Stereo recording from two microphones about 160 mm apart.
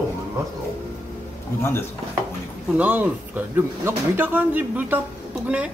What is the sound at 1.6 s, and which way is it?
Speech, 15° left (ahead or behind).